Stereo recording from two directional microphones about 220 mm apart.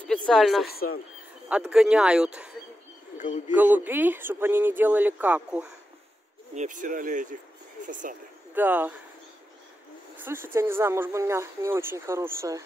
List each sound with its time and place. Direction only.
0.3 s speech: centre (ahead or behind)
0.7 s speech: 45° left (ahead or behind)
1.5 s speech: 5° right (ahead or behind)
3.2 s speech: 35° left (ahead or behind)
3.5 s speech: 10° right (ahead or behind)
6.5 s speech: 35° right (ahead or behind)
8.5 s speech: 10° right (ahead or behind)
10.5 s speech: 10° right (ahead or behind)